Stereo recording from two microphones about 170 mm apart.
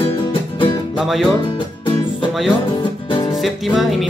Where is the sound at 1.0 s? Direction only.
Centre (ahead or behind).